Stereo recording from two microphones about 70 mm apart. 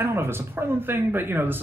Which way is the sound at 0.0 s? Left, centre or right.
Right.